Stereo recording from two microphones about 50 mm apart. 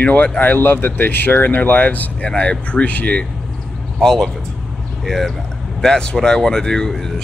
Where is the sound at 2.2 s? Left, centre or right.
Left.